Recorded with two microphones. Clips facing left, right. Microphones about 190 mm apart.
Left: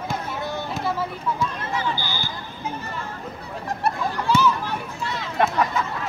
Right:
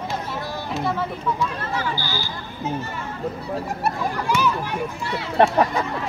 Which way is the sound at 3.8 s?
10° right (ahead or behind).